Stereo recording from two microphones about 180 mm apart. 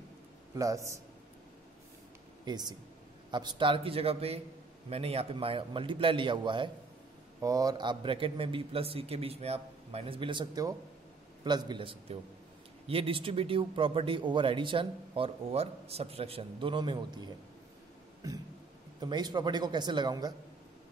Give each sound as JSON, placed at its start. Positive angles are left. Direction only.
{"t": 0.6, "sound": "a man's voice", "side_deg": -15}
{"t": 2.4, "sound": "a man's voice", "side_deg": -20}